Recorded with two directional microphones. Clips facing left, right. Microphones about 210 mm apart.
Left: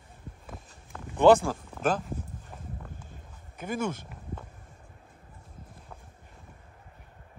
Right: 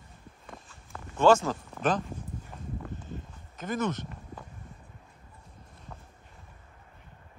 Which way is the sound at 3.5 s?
10° left (ahead or behind).